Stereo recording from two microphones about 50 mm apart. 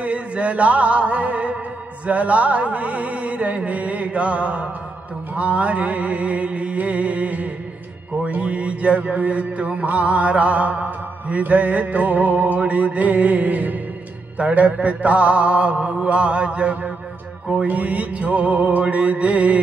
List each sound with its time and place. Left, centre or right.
0.0 s mantra: right